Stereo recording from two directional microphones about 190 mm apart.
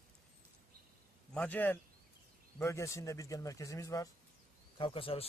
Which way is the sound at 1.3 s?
10° left (ahead or behind).